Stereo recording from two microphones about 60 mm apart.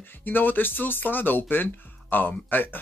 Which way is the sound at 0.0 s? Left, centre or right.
Left.